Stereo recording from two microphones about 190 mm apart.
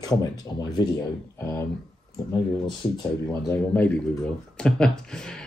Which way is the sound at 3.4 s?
10° left (ahead or behind).